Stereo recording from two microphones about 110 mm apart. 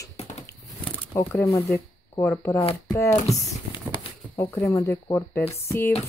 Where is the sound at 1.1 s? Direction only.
25° left (ahead or behind).